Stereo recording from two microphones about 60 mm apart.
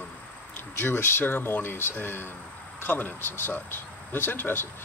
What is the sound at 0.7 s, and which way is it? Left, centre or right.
Speech, left.